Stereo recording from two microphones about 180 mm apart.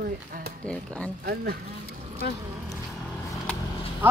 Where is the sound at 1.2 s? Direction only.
60° right (ahead or behind).